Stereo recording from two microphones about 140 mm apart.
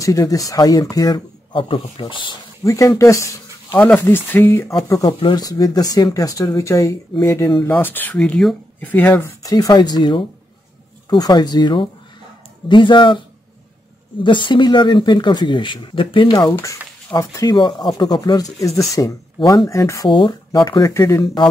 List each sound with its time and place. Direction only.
0.0 s speech: 25° left (ahead or behind)
2.6 s speech: 20° left (ahead or behind)
9.4 s speech: 25° left (ahead or behind)
14.2 s speech: 35° left (ahead or behind)